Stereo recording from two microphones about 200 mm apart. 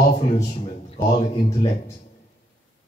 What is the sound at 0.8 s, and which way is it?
Speech, 30° left (ahead or behind).